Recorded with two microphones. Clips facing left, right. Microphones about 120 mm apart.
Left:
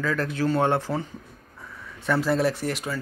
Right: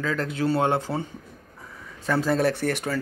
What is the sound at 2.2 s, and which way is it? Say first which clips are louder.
Speech: right 3 dB; 55° right (ahead or behind).